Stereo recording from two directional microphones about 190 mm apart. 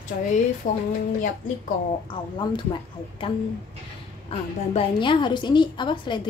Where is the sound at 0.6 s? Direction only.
40° left (ahead or behind).